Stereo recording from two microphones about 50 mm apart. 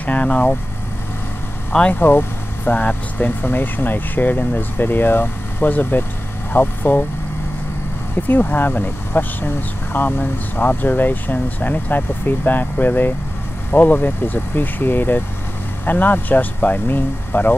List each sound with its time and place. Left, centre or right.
0.0 s speech: left
1.7 s speech: left
2.0 s speech: left
8.3 s speech: left